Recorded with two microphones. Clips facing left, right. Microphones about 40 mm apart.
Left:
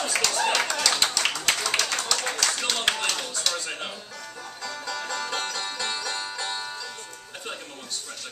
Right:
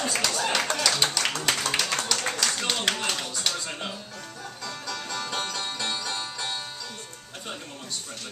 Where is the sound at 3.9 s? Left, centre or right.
Centre.